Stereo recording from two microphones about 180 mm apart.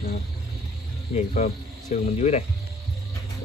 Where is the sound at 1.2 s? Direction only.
40° left (ahead or behind).